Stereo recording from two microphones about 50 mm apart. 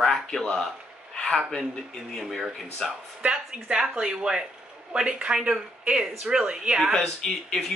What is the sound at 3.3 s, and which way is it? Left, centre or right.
Speech, centre.